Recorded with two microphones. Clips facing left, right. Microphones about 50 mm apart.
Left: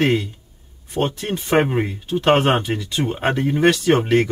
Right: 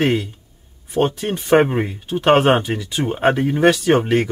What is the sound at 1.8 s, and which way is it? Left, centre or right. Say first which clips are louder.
Speech: right 1 dB; centre.